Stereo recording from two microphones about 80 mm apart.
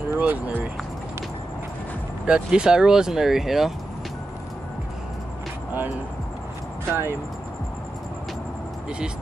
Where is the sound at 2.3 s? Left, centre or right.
Centre.